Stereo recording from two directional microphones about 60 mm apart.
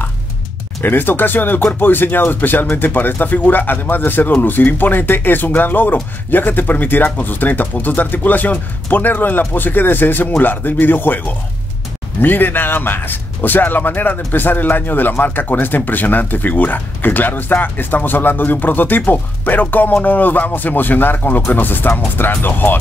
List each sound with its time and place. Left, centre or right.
0.8 s speech: left